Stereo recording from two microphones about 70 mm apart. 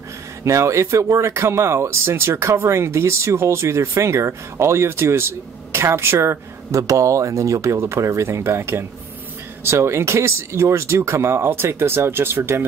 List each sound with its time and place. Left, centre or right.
0.4 s speech: right
6.8 s speech: right